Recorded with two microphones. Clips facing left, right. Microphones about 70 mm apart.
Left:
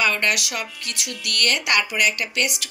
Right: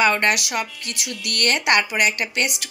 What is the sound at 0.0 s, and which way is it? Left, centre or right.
Speech, right.